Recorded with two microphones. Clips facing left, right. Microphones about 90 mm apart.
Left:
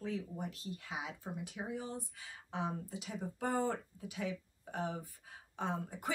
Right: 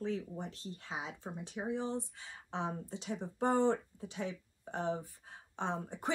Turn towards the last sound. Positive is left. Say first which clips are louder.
# right 1 dB
turn(degrees=-30)  # may be behind; listen again after turning